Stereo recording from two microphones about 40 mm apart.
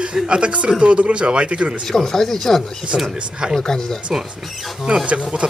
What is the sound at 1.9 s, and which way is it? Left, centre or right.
Speech, centre.